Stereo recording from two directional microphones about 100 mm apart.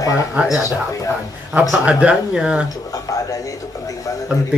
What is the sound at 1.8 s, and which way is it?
Speech, 10° right (ahead or behind).